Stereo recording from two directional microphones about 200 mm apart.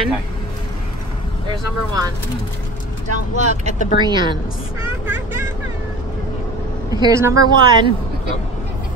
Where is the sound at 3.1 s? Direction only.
35° right (ahead or behind).